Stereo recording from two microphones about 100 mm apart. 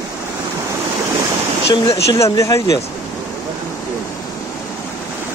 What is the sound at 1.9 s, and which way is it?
Speech, 30° left (ahead or behind).